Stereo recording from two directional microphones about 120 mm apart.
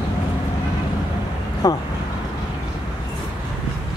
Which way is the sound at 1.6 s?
30° left (ahead or behind).